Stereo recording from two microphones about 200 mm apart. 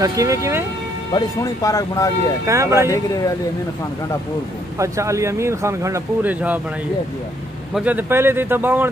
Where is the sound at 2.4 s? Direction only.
15° right (ahead or behind).